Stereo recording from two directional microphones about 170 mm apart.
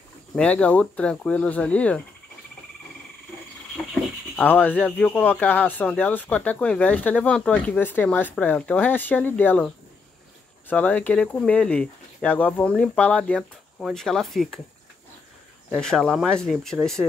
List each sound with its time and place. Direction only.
0.4 s speech: 5° left (ahead or behind)
4.4 s speech: 10° left (ahead or behind)
10.7 s speech: 10° left (ahead or behind)
15.7 s speech: 5° left (ahead or behind)